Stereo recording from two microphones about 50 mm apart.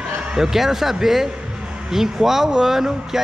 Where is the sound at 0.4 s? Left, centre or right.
Centre.